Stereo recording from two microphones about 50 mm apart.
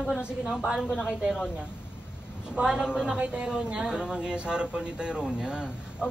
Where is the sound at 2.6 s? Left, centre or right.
Centre.